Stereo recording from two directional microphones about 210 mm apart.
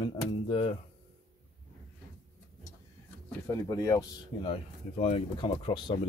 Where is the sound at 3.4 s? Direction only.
15° left (ahead or behind).